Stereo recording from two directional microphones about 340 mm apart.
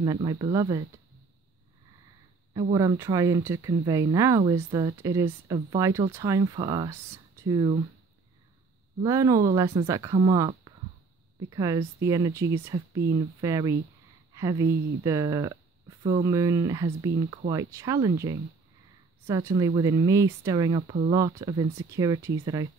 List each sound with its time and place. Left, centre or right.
0.0 s speech: centre
2.5 s speech: centre
9.0 s speech: centre
19.2 s speech: centre